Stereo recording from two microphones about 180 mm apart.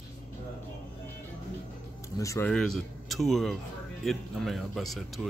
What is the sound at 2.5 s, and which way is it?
Speech, centre (ahead or behind).